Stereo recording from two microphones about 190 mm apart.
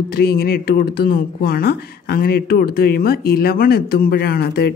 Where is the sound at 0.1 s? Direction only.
55° left (ahead or behind).